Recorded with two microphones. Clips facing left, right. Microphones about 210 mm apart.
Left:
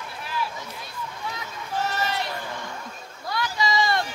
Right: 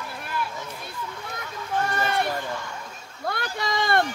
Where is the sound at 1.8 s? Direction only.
55° right (ahead or behind).